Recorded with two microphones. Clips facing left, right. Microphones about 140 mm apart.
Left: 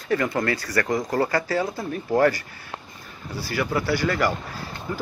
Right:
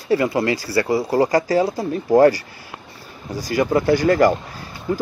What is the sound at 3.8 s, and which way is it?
Speech, 45° right (ahead or behind).